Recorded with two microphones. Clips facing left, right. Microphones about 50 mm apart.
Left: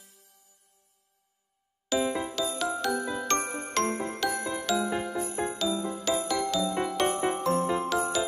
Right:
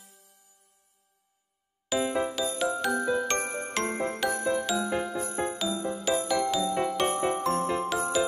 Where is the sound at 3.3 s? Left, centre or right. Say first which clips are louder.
Left 1 dB; right.